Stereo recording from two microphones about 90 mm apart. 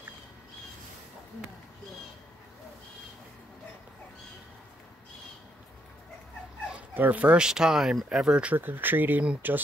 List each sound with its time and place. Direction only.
6.9 s speech: 20° right (ahead or behind)
8.5 s speech: 20° right (ahead or behind)